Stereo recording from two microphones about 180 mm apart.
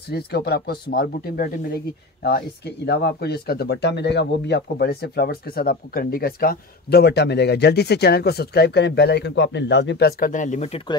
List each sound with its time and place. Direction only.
0.1 s speech: 60° left (ahead or behind); by 10.8 s 40° left (ahead or behind)